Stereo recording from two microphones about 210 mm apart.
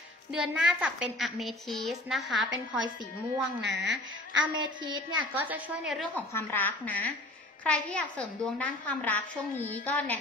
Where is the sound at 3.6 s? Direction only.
55° right (ahead or behind).